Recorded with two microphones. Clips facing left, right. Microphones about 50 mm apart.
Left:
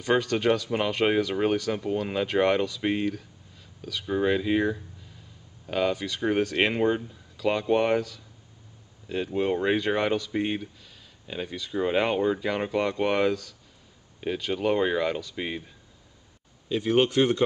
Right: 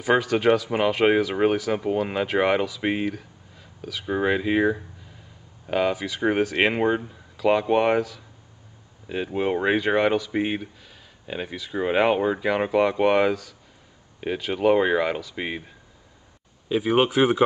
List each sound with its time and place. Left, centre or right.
0.0 s speech: centre